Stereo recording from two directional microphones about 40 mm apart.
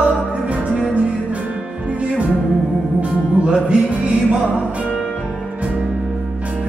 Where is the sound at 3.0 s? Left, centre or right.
Right.